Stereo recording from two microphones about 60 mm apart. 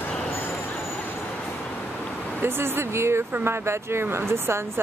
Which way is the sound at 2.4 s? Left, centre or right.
Right.